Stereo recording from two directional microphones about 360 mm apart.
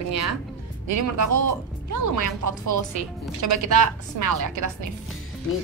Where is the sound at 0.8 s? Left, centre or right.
Right.